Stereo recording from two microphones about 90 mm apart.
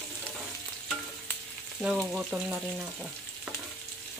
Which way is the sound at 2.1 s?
10° right (ahead or behind).